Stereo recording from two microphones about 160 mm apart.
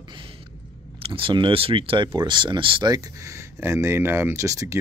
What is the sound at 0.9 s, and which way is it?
Speech, 35° right (ahead or behind).